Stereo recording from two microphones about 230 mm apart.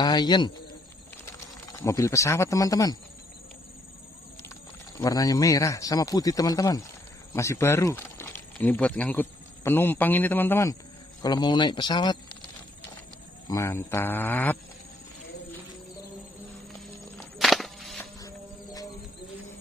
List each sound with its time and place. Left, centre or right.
0.0 s a man's voice: centre
4.9 s a man's voice: centre
13.5 s a man's voice: centre
17.2 s walk: centre
18.2 s music: centre